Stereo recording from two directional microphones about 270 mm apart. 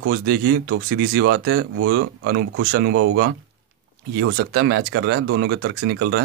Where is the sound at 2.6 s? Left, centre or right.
Right.